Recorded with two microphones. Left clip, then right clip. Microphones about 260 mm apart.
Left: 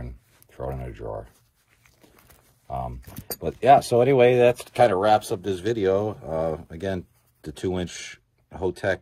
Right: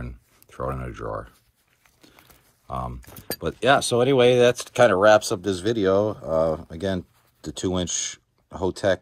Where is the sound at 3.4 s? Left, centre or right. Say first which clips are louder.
Left 3 dB; centre.